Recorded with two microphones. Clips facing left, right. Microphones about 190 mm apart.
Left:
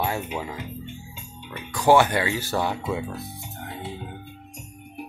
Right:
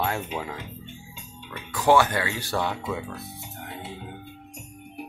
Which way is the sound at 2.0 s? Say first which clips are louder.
Left 2 dB; 15° left (ahead or behind).